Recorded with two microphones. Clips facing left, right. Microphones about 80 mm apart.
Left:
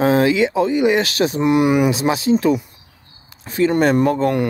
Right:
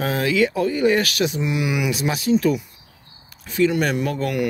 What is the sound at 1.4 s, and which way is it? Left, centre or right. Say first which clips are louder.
Speech: left 8 dB; left.